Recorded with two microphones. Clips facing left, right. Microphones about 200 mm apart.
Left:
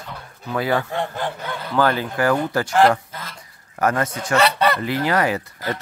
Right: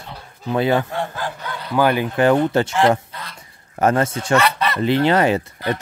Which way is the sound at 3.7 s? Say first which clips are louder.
Right 3 dB; 25° right (ahead or behind).